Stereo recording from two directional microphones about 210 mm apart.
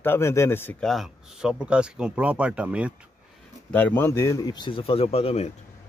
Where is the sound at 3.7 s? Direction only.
10° left (ahead or behind); by 5.5 s 30° left (ahead or behind).